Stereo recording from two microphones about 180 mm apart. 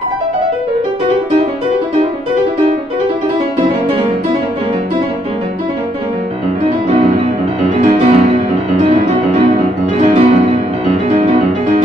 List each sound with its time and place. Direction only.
7.6 s music: 40° right (ahead or behind)